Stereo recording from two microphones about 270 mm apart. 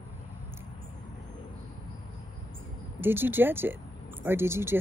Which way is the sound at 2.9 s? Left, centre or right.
Centre.